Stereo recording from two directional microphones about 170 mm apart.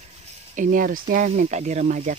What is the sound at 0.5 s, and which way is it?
Speech, 50° right (ahead or behind).